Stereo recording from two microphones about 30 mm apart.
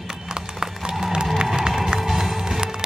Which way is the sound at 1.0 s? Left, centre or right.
Right.